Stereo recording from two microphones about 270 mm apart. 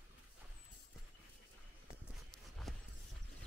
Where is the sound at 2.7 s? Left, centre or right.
Centre.